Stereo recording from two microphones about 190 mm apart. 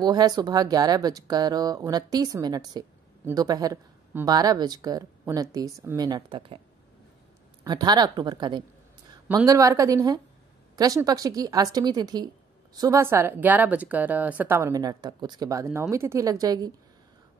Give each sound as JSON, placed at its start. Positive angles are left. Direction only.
{"t": 0.0, "sound": "speech", "side_deg": -20}
{"t": 7.6, "sound": "speech", "side_deg": -20}